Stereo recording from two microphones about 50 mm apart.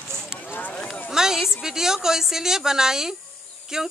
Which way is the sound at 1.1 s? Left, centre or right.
Centre.